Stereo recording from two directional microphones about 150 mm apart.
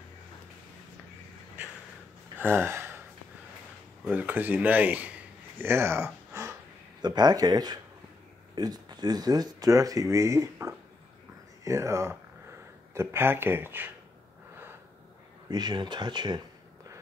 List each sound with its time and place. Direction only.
2.3 s gasp: 15° right (ahead or behind)
4.0 s speech: 10° right (ahead or behind)
5.6 s a sound: 15° right (ahead or behind)
7.0 s speech: 30° right (ahead or behind)
15.5 s speech: 30° right (ahead or behind)